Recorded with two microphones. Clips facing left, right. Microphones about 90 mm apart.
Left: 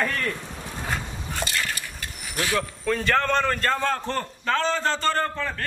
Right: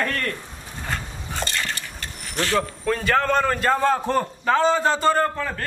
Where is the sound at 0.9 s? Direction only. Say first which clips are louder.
Right 2 dB; 5° left (ahead or behind).